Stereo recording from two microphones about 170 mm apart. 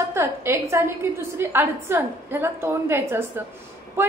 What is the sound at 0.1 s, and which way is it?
A woman's voice, 15° right (ahead or behind).